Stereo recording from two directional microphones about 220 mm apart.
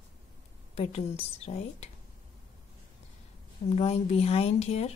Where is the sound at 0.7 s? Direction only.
30° left (ahead or behind).